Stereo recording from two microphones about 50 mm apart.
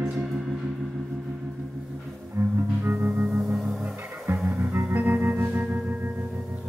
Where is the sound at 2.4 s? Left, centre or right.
Right.